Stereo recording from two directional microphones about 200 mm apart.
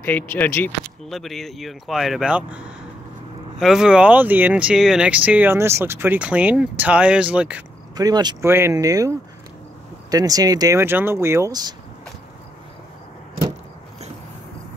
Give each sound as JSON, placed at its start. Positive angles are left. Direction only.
{"t": 0.0, "sound": "speech", "side_deg": 10}
{"t": 7.9, "sound": "speech", "side_deg": -20}
{"t": 10.1, "sound": "speech", "side_deg": -20}